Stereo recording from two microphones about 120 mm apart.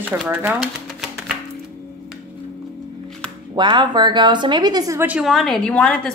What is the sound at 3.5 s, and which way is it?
Speech, 40° right (ahead or behind).